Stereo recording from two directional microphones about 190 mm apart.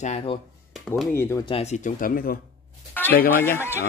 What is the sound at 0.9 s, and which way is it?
Speech, centre (ahead or behind).